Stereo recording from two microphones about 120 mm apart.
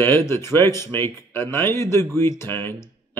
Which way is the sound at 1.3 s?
20° left (ahead or behind).